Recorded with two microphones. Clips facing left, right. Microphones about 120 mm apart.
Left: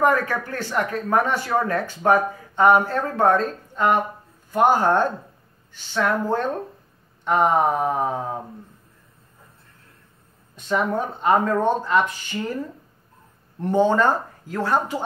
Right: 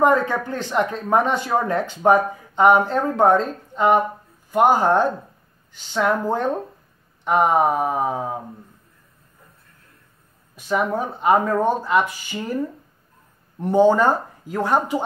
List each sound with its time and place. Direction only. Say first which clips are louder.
0.0 s speech: right 2 dB; 20° right (ahead or behind)
10.5 s speech: right 1 dB; 10° right (ahead or behind)
13.6 s speech: right 3 dB; 10° right (ahead or behind)